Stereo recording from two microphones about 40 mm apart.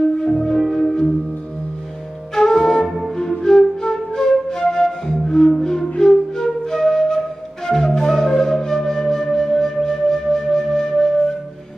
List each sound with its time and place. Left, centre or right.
0.2 s music: centre
0.6 s music: centre
2.3 s flute: centre
5.2 s music: centre
5.6 s flute: centre